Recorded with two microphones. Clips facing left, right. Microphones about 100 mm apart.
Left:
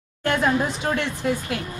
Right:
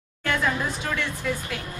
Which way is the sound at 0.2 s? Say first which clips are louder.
Left 4 dB; 30° left (ahead or behind).